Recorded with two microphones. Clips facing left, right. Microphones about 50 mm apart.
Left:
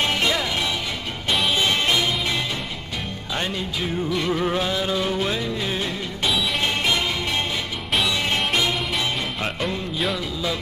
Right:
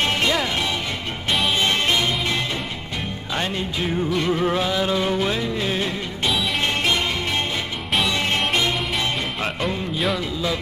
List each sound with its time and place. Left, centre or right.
0.0 s music: centre
1.6 s music: centre
4.2 s music: centre
7.9 s music: centre